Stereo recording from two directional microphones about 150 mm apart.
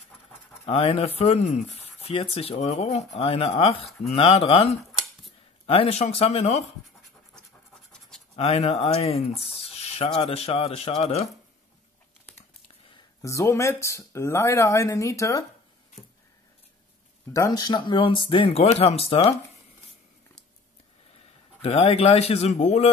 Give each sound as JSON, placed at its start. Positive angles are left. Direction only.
{"t": 0.7, "sound": "speech", "side_deg": 40}
{"t": 7.9, "sound": "scratch", "side_deg": 5}
{"t": 8.4, "sound": "speech", "side_deg": 45}
{"t": 13.2, "sound": "speech", "side_deg": 20}
{"t": 17.3, "sound": "speech", "side_deg": 25}
{"t": 21.5, "sound": "speech", "side_deg": 45}